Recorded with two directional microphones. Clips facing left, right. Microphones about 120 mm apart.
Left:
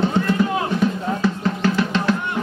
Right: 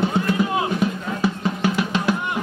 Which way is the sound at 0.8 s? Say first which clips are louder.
Left 2 dB; 10° right (ahead or behind).